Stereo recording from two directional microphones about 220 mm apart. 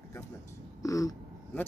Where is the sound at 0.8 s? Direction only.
15° left (ahead or behind).